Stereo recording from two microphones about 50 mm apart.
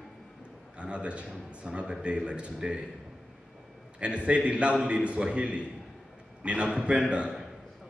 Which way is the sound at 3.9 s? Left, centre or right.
Right.